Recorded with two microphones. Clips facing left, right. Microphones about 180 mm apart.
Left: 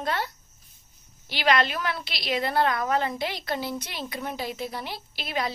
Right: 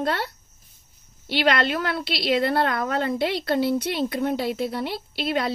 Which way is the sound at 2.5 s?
60° right (ahead or behind).